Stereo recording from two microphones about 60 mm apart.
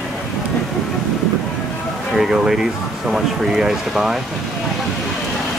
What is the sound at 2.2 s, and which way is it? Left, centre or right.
Speech, centre.